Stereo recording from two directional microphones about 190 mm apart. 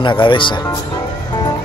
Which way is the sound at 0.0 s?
25° left (ahead or behind).